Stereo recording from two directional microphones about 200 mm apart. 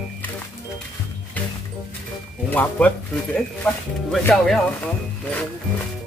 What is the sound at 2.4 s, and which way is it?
Speech, 10° left (ahead or behind).